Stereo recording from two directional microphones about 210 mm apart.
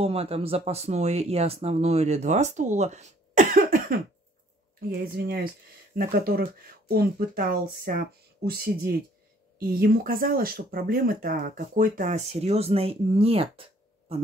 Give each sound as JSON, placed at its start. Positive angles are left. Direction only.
{"t": 0.0, "sound": "speech", "side_deg": -30}